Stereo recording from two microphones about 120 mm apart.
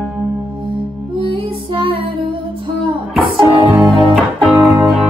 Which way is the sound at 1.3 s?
45° right (ahead or behind).